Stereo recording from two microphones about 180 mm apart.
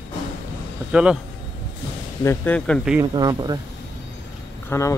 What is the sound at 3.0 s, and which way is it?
Speech, 20° right (ahead or behind).